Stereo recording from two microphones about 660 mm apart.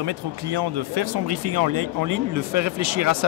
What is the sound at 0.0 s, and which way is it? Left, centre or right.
Speech, right.